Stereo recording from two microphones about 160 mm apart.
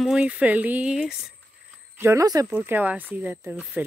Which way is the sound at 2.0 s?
20° right (ahead or behind).